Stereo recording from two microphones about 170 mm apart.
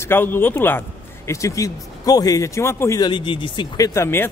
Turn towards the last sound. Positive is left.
turn(degrees=15)  # may be behind; listen again after turning